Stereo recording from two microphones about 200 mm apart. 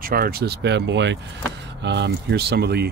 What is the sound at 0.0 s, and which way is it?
Speech, 50° right (ahead or behind).